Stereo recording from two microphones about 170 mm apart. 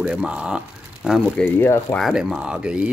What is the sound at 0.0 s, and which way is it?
Speech, 5° right (ahead or behind).